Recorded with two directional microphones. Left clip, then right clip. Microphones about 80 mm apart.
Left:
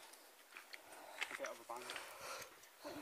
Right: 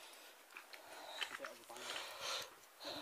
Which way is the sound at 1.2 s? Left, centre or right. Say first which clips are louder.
Left 2 dB; centre.